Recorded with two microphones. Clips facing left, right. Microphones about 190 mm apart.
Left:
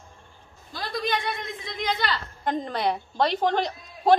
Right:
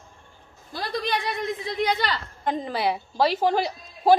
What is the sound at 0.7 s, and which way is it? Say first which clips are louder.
A woman's voice: right 1 dB; 35° right (ahead or behind).